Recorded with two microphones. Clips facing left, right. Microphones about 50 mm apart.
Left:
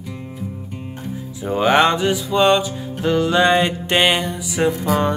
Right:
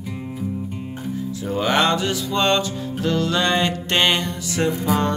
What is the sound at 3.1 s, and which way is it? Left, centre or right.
Music, centre.